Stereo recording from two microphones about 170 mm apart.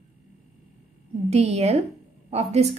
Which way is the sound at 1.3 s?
40° right (ahead or behind).